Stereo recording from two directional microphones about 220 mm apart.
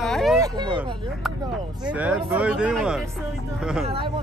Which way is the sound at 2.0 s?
5° right (ahead or behind).